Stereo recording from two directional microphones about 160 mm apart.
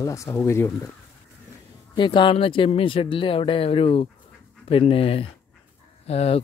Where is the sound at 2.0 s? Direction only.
30° left (ahead or behind).